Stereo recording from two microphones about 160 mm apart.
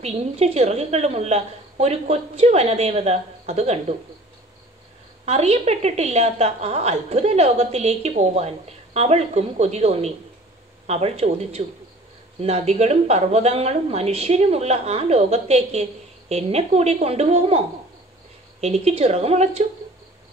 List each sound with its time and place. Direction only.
0.0 s a woman's voice: 40° right (ahead or behind)
5.2 s a woman's voice: 40° right (ahead or behind)